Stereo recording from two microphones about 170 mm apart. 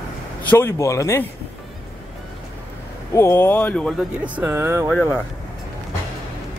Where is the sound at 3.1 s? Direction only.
15° left (ahead or behind).